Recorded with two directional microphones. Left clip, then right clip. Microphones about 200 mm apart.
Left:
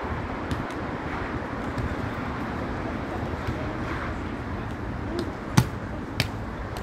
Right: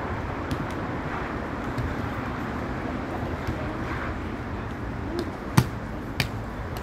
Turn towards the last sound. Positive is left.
turn(degrees=20)  # may be behind; listen again after turning